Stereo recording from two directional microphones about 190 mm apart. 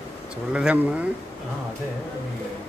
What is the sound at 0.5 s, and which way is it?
Speech, 5° right (ahead or behind).